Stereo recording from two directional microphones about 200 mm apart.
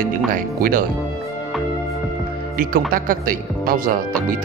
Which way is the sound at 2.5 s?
45° right (ahead or behind).